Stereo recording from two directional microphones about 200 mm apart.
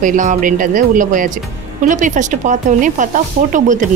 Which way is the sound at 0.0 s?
40° right (ahead or behind).